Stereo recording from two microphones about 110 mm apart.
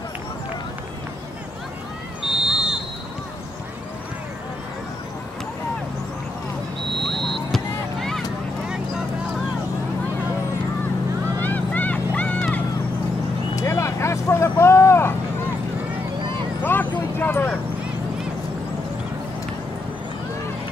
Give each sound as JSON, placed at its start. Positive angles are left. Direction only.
{"t": 2.2, "sound": "a sound", "side_deg": -5}
{"t": 6.8, "sound": "vehicle", "side_deg": -45}
{"t": 7.1, "sound": "a sound", "side_deg": 0}
{"t": 8.6, "sound": "vehicle", "side_deg": -5}
{"t": 11.4, "sound": "vehicle", "side_deg": 15}
{"t": 13.6, "sound": "vehicle", "side_deg": 25}
{"t": 16.6, "sound": "vehicle", "side_deg": 15}